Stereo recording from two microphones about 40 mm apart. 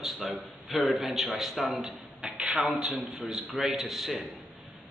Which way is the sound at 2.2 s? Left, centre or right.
Centre.